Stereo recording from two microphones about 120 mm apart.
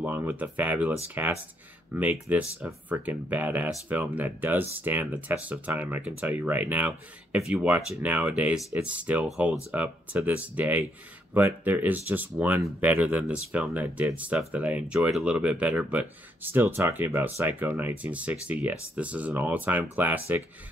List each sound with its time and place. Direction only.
0.0 s speech: 15° right (ahead or behind)